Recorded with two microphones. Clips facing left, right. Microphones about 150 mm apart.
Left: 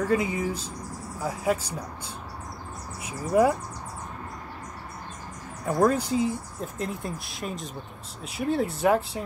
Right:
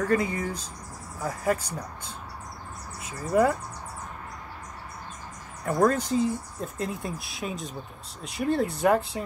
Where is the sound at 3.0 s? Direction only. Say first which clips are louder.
Left 1 dB; 15° left (ahead or behind).